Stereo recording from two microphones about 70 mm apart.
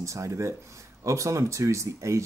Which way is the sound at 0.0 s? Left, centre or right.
Right.